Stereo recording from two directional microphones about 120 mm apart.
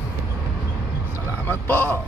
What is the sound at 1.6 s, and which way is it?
Speech, 15° left (ahead or behind).